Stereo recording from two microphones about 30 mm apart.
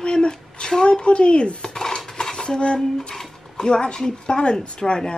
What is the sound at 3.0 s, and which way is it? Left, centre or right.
A woman's voice, centre.